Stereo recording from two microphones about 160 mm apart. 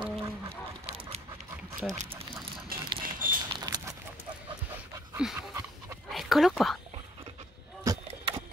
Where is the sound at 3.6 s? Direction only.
25° right (ahead or behind).